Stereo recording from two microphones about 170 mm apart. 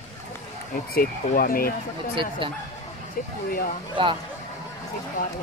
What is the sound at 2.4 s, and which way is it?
Speech, 30° right (ahead or behind).